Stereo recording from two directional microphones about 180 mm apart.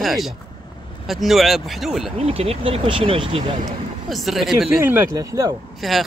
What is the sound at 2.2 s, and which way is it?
Speech, 35° right (ahead or behind).